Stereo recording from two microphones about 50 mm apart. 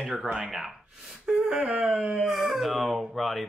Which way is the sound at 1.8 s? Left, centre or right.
Centre.